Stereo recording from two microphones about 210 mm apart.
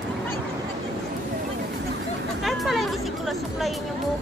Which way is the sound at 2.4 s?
Centre (ahead or behind).